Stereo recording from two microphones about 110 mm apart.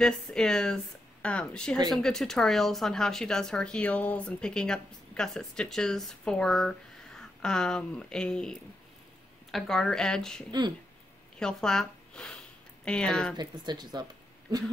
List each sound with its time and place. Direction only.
0.0 s speech: 5° left (ahead or behind)
13.4 s speech: 40° right (ahead or behind)